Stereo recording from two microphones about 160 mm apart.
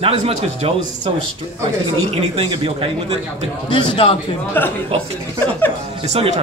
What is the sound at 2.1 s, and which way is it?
A man's voice, 40° right (ahead or behind).